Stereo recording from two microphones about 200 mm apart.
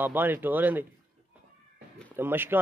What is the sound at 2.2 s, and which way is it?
Speech, 10° right (ahead or behind).